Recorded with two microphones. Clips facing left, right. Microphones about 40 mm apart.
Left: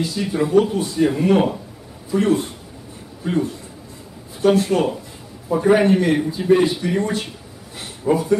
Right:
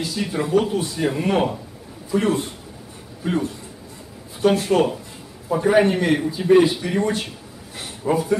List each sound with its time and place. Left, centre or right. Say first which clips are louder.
0.0 s a man's voice: left 3 dB; centre
4.5 s a man's voice: left 1 dB; centre